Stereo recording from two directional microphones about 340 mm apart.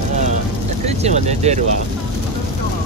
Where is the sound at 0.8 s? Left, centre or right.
Centre.